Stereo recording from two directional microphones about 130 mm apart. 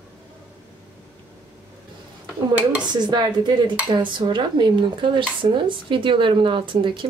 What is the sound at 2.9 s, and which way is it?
Speech, 35° right (ahead or behind).